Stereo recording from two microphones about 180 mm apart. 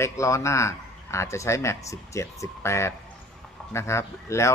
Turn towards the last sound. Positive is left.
turn(degrees=15)  # may be behind; listen again after turning